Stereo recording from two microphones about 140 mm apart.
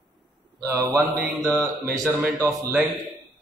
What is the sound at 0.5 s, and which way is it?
A man's voice, 20° right (ahead or behind).